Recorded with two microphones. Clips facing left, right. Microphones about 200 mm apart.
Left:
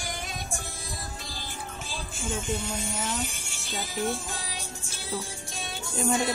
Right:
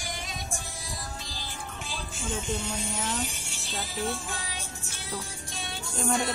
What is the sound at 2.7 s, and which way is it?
Speech, centre (ahead or behind).